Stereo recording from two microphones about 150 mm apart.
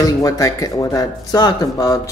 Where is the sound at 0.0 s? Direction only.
20° left (ahead or behind).